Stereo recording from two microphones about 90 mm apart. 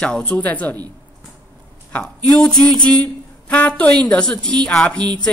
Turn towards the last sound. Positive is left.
turn(degrees=10)  # may be behind; listen again after turning